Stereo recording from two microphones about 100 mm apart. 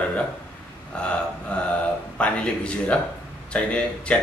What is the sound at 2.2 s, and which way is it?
A man's voice, 10° left (ahead or behind).